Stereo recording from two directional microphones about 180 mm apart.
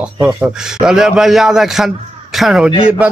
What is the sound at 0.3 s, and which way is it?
A man's voice, 5° right (ahead or behind).